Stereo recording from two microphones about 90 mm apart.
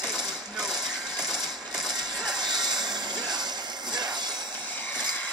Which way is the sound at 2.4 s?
50° right (ahead or behind).